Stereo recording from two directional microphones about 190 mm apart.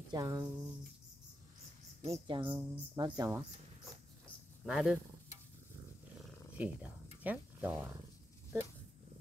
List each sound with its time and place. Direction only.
0.1 s speech: 20° right (ahead or behind)
2.0 s speech: 30° right (ahead or behind)
4.6 s speech: 5° right (ahead or behind)
6.5 s speech: 10° right (ahead or behind)